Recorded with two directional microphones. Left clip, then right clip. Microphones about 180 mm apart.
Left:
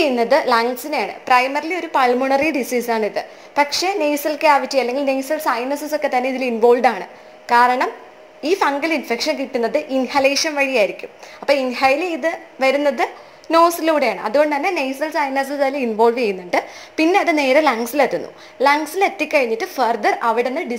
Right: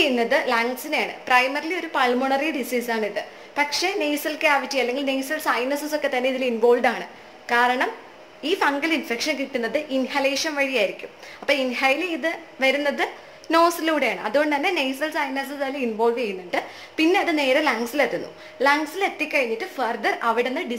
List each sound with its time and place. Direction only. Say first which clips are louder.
0.0 s a woman's voice: left 5 dB; 25° left (ahead or behind)
15.3 s a woman's voice: left 8 dB; 35° left (ahead or behind)